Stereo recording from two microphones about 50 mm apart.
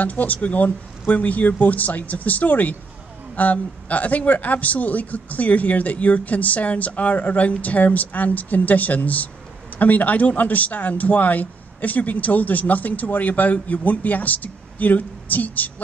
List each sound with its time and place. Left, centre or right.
0.0 s a man's voice: left